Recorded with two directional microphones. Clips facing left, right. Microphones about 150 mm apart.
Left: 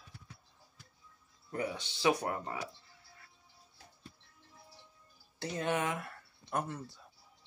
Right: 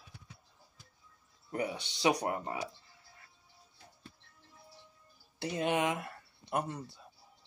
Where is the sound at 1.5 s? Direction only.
15° right (ahead or behind).